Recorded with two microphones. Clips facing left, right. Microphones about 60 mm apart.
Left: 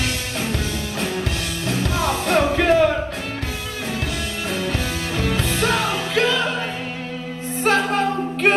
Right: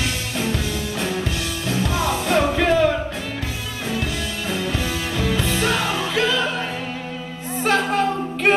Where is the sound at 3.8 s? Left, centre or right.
Centre.